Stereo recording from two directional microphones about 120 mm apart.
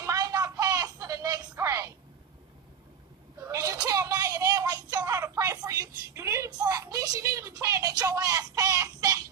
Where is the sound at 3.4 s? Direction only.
25° right (ahead or behind).